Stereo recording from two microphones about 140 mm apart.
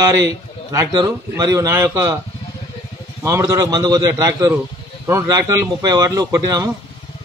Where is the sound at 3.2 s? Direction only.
20° right (ahead or behind).